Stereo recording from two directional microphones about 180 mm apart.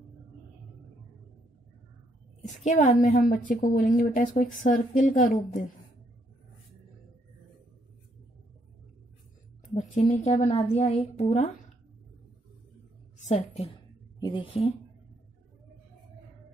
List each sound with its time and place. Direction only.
2.4 s a woman's voice: 45° left (ahead or behind)
9.8 s a woman's voice: 40° left (ahead or behind)
14.2 s speech: 30° left (ahead or behind)